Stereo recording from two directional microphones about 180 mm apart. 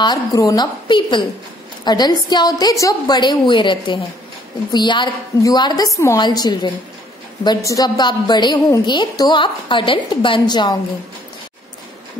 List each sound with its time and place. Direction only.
0.0 s a woman's voice: 20° left (ahead or behind)